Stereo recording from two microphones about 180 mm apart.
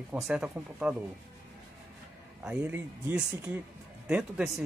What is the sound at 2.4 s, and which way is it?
Speech, 5° right (ahead or behind).